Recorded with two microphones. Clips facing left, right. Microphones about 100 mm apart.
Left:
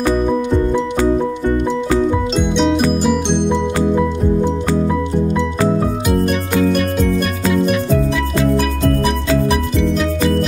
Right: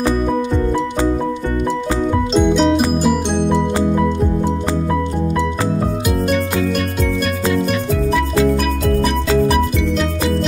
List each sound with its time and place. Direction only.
2.3 s music: 5° right (ahead or behind)